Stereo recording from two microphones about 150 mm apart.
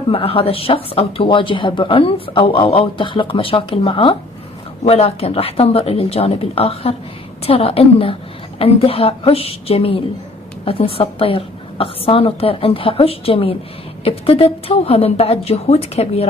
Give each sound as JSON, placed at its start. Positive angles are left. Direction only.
{"t": 0.1, "sound": "speech", "side_deg": 35}